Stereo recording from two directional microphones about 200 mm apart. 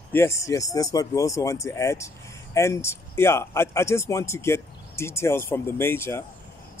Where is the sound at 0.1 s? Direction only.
15° left (ahead or behind).